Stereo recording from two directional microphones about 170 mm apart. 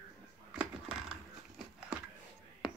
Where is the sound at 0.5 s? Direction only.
5° right (ahead or behind).